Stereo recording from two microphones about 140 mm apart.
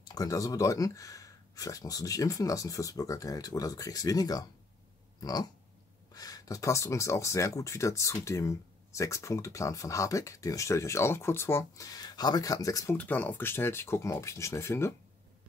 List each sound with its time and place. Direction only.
0.1 s speech: 25° left (ahead or behind)
12.9 s speech: 10° left (ahead or behind)